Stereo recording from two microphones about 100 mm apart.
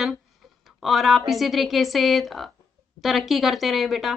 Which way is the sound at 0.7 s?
Centre (ahead or behind).